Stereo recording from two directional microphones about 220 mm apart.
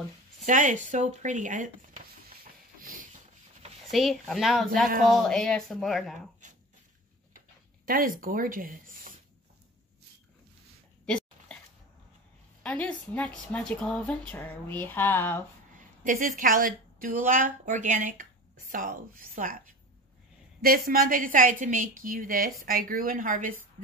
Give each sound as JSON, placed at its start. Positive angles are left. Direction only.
{"t": 0.5, "sound": "speech", "side_deg": -35}
{"t": 2.8, "sound": "rub", "side_deg": -40}
{"t": 3.9, "sound": "speech", "side_deg": 0}
{"t": 7.3, "sound": "speech", "side_deg": -40}
{"t": 11.1, "sound": "dog", "side_deg": 5}
{"t": 12.6, "sound": "speech", "side_deg": 5}
{"t": 16.0, "sound": "speech", "side_deg": -35}
{"t": 20.6, "sound": "speech", "side_deg": -40}